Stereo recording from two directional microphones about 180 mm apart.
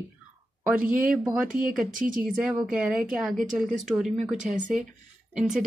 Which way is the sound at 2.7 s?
5° right (ahead or behind).